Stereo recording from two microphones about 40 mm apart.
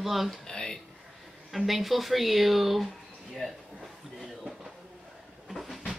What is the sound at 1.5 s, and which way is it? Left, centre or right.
Speech, centre.